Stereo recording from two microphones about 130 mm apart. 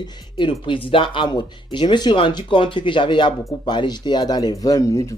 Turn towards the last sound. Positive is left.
turn(degrees=25)  # may be behind; listen again after turning